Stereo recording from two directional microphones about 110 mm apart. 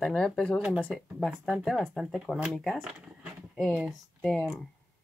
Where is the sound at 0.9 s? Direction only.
Centre (ahead or behind).